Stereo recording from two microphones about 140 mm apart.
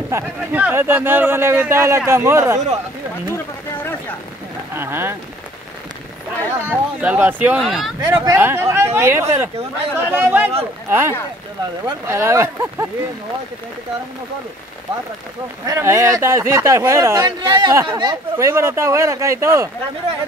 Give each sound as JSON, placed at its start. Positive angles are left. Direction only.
{"t": 0.1, "sound": "speech", "side_deg": -10}
{"t": 4.7, "sound": "speech", "side_deg": -15}
{"t": 6.7, "sound": "speech", "side_deg": -15}
{"t": 7.6, "sound": "speech", "side_deg": 0}
{"t": 8.0, "sound": "speech", "side_deg": -30}
{"t": 8.4, "sound": "speech", "side_deg": -15}
{"t": 15.6, "sound": "speech", "side_deg": -20}
{"t": 18.5, "sound": "speech", "side_deg": -20}